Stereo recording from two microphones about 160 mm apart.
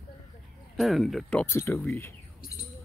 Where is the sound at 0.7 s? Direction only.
Centre (ahead or behind); by 1.8 s 15° left (ahead or behind).